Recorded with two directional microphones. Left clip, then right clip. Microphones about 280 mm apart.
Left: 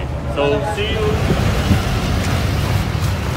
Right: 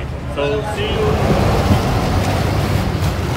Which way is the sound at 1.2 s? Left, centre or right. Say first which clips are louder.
Right 4 dB; right.